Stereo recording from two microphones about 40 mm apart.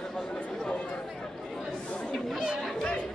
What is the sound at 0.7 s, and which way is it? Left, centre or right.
Chatter, left.